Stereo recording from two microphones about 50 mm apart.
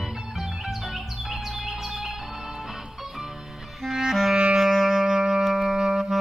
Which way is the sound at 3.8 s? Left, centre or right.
Centre.